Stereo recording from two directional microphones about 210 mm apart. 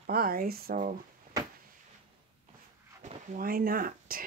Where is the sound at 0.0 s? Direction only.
45° right (ahead or behind).